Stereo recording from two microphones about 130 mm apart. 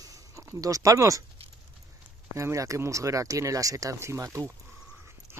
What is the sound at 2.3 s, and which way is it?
Speech, 25° right (ahead or behind).